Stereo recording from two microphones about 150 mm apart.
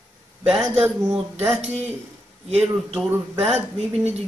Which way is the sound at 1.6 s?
50° right (ahead or behind).